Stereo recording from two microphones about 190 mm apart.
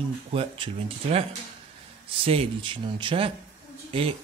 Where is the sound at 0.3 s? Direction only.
30° right (ahead or behind).